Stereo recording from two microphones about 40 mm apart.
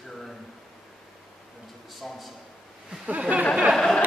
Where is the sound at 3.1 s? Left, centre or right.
Right.